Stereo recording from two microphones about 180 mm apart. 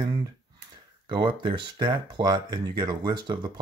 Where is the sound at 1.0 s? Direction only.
25° right (ahead or behind).